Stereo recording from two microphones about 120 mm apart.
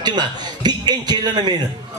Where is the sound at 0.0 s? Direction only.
35° right (ahead or behind).